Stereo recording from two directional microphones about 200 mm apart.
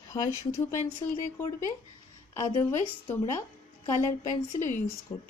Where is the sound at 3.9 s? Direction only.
40° left (ahead or behind).